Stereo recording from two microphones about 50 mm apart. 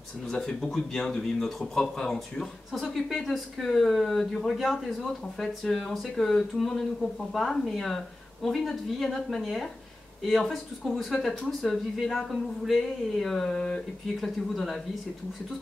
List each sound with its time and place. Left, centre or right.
0.3 s speech: centre
12.3 s a sound: centre
14.2 s speech: centre